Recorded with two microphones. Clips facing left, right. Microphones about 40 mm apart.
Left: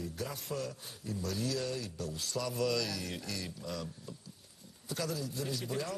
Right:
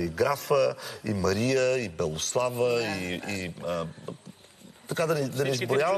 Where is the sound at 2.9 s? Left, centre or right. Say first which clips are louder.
Right 8 dB; right.